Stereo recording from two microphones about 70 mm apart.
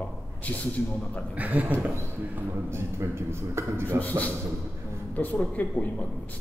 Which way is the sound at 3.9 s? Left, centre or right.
Left.